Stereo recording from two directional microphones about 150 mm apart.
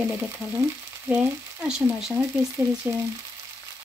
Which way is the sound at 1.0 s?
10° right (ahead or behind).